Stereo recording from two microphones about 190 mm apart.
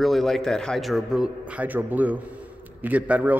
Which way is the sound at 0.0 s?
Centre (ahead or behind).